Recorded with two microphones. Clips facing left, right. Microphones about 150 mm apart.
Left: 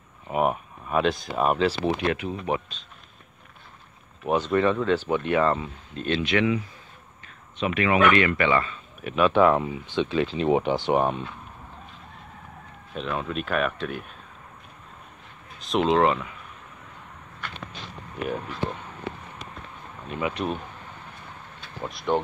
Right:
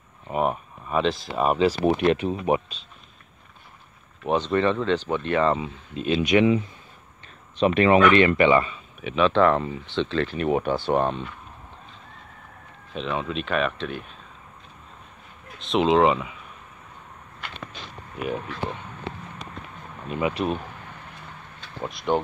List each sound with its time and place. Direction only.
0.3 s a sound: 5° left (ahead or behind)
1.9 s speech: 25° right (ahead or behind)
4.2 s speech: 5° left (ahead or behind)
5.6 s speech: 10° right (ahead or behind)
6.3 s speech: 25° right (ahead or behind)
9.0 s speech: 5° left (ahead or behind)
12.9 s speech: centre (ahead or behind)
15.7 s speech: centre (ahead or behind)
18.2 s speech: centre (ahead or behind)
21.9 s speech: centre (ahead or behind)